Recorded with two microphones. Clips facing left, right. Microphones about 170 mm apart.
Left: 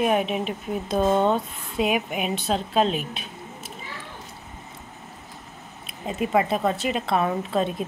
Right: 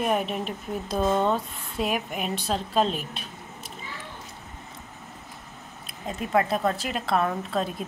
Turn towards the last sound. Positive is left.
turn(degrees=0)  # may be behind; listen again after turning